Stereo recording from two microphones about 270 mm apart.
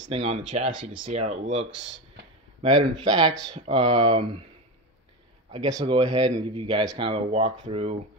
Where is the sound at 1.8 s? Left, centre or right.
Right.